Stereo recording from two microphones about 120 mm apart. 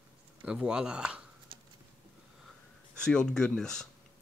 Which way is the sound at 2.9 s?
5° left (ahead or behind).